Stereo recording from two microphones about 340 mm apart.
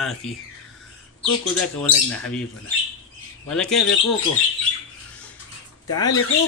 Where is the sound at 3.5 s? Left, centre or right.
Centre.